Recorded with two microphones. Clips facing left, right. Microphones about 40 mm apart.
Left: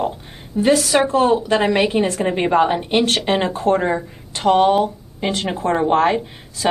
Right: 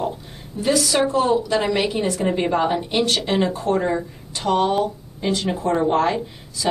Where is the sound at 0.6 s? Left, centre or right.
Left.